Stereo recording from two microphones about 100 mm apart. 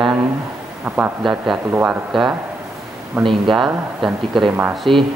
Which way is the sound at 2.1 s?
5° right (ahead or behind).